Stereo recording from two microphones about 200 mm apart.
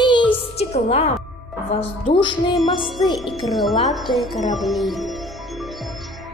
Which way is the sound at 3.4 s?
Centre (ahead or behind).